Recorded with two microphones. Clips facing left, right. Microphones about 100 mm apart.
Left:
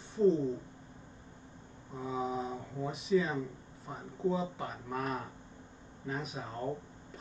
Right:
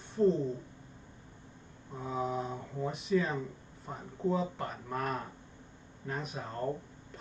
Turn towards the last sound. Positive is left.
turn(degrees=0)  # may be behind; listen again after turning